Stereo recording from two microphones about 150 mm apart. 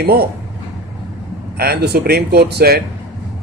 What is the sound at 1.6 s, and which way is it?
Speech, 90° right.